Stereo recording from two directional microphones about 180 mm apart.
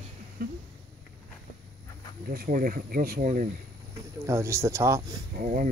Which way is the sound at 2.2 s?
55° right (ahead or behind).